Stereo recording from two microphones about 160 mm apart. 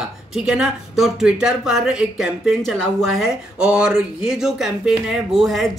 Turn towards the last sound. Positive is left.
turn(degrees=0)  # may be behind; listen again after turning